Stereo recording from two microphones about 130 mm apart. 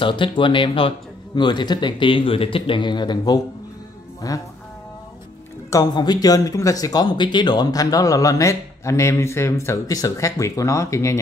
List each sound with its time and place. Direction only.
0.0 s speech: 40° left (ahead or behind)
5.7 s speech: 30° left (ahead or behind)